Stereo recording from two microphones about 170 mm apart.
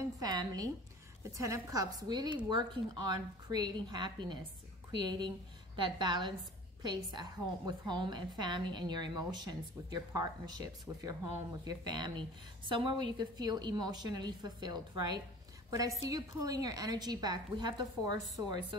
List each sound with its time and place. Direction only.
0.0 s a woman's voice: 25° right (ahead or behind)